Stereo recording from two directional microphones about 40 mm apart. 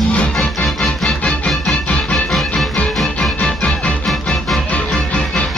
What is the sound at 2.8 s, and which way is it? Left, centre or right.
Music, left.